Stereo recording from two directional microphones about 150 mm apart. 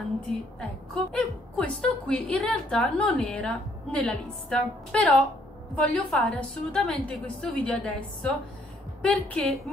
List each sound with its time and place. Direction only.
0.3 s a woman's voice: 5° left (ahead or behind)